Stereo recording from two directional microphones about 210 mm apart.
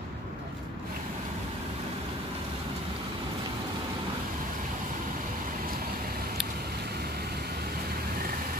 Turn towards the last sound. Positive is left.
turn(degrees=-50)  # may be behind; listen again after turning